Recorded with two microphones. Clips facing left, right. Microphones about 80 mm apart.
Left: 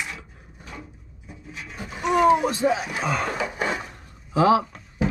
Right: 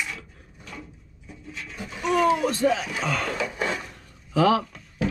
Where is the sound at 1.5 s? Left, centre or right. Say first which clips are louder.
Even; centre.